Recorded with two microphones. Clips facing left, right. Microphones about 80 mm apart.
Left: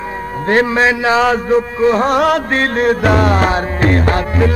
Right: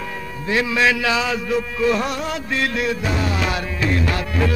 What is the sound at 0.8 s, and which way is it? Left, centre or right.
A man's voice, left.